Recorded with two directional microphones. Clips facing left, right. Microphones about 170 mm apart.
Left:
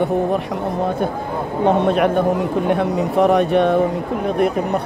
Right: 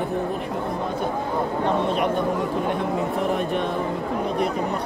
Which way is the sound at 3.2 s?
70° left (ahead or behind).